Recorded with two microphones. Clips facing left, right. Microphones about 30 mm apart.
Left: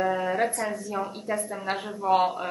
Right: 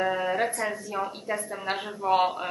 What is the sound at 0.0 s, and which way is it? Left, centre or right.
A woman's voice, centre.